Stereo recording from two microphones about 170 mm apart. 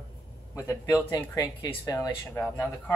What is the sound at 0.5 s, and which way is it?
Speech, 15° left (ahead or behind).